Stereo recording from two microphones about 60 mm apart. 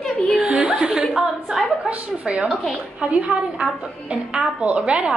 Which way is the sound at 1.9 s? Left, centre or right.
Centre.